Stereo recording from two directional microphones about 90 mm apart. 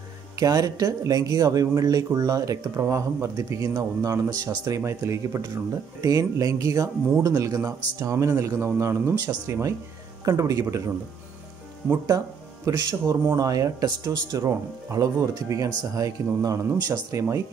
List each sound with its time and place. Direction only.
0.4 s speech: 40° right (ahead or behind)
12.6 s speech: 40° right (ahead or behind)